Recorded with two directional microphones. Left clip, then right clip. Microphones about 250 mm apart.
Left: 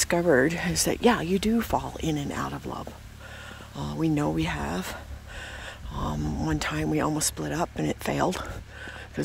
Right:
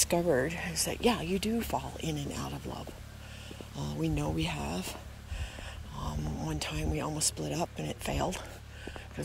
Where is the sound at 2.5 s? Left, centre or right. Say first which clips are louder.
Left 6 dB; left.